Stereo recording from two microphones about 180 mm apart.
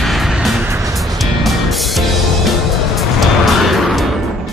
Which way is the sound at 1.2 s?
Centre (ahead or behind).